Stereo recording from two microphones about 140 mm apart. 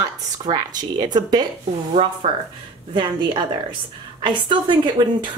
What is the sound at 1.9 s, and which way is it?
Speech, 50° right (ahead or behind).